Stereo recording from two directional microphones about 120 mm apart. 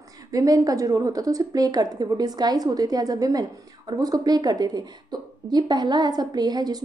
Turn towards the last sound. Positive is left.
turn(degrees=-35)  # may be behind; listen again after turning